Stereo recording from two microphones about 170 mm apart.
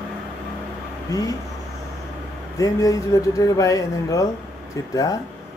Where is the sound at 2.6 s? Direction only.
20° left (ahead or behind).